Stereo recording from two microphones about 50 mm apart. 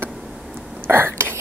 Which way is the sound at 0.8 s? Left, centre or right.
Right.